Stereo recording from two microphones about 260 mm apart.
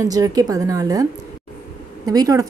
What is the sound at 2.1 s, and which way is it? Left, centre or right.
Speech, centre.